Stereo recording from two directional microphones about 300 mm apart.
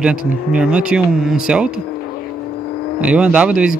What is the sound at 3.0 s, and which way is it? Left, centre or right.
Speech, centre.